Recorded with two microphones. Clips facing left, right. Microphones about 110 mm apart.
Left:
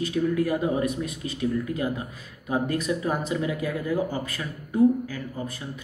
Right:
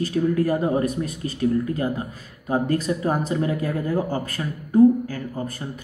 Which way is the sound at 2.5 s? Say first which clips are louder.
Right 3 dB; 35° right (ahead or behind).